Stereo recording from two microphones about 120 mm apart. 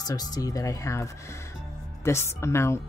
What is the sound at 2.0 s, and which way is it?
Speech, 20° left (ahead or behind).